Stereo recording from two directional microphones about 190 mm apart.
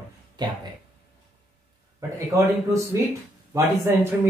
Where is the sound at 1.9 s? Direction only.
15° right (ahead or behind).